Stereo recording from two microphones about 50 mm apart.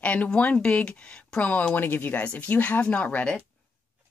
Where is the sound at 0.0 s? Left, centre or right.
Left.